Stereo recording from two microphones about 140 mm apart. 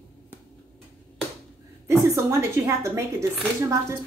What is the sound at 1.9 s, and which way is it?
Speech, 20° right (ahead or behind).